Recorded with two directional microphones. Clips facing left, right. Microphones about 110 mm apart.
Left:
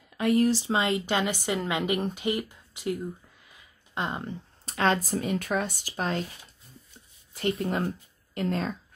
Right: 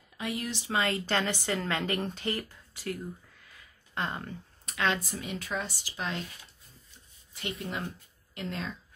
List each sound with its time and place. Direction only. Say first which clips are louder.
0.2 s speech: left 12 dB; 45° left (ahead or behind)
0.7 s a woman's voice: left 3 dB; 20° left (ahead or behind)
3.4 s a sound: even; 20° left (ahead or behind)
4.7 s speech: left 5 dB; 40° left (ahead or behind)
7.3 s speech: left 10 dB; 30° left (ahead or behind)
7.6 s speech: left 8 dB; 45° left (ahead or behind)